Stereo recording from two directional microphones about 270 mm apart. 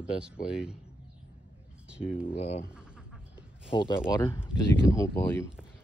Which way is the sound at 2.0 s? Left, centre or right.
Centre.